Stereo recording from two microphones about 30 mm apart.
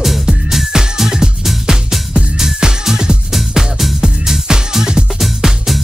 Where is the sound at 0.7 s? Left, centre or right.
Centre.